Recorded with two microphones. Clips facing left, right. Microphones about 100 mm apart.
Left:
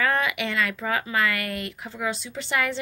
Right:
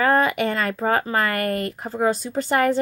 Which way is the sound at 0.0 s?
40° right (ahead or behind).